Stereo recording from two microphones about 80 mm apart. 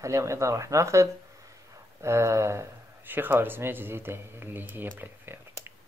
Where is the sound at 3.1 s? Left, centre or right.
Right.